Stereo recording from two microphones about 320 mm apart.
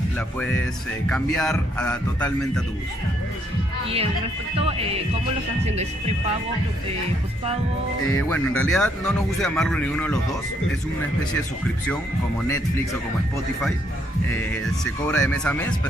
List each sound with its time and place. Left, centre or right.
1.0 s speech: centre
4.6 s speech: centre
8.1 s speech: centre
15.0 s speech: centre